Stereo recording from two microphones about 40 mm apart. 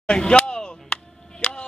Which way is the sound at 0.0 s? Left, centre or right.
Left.